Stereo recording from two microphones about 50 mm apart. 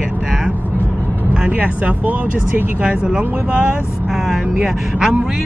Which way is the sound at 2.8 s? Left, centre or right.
Centre.